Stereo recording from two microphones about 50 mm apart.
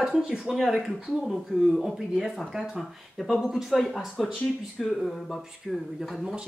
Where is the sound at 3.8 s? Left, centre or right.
Centre.